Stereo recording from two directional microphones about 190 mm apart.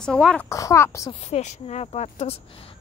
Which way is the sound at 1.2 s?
35° left (ahead or behind).